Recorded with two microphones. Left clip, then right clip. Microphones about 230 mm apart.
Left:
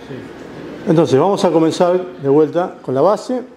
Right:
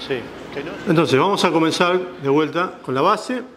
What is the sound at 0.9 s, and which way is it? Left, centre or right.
A man's voice, centre.